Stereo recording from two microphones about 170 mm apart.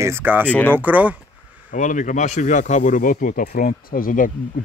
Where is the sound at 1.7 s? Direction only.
50° left (ahead or behind).